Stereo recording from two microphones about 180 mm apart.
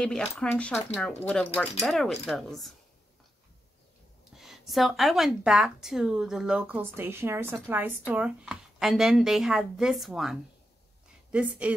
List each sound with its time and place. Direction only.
0.0 s speech: 5° left (ahead or behind)
4.4 s speech: centre (ahead or behind)